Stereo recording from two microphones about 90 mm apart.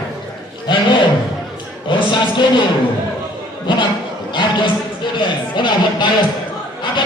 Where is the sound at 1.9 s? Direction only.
60° left (ahead or behind).